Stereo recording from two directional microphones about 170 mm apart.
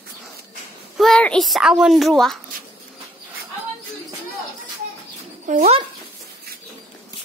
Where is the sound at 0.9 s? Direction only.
5° left (ahead or behind).